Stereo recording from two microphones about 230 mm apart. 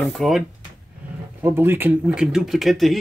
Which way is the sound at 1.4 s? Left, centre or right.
Centre.